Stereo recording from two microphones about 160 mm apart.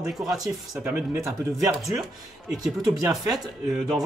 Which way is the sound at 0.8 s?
15° right (ahead or behind).